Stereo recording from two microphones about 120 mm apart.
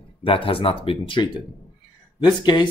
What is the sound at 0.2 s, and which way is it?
Speech, 50° left (ahead or behind).